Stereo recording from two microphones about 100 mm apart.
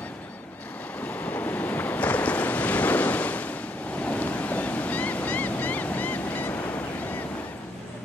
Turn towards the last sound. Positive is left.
turn(degrees=15)  # may be behind; listen again after turning